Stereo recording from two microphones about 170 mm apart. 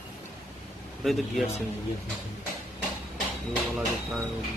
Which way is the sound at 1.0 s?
Centre (ahead or behind).